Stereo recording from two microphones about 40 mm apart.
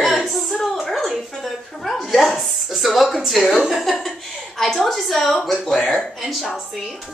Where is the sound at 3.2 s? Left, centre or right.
Centre.